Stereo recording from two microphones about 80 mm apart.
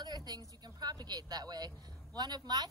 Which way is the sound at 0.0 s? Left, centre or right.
Right.